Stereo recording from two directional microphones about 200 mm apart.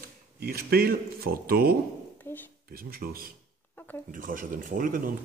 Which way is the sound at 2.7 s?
50° right (ahead or behind).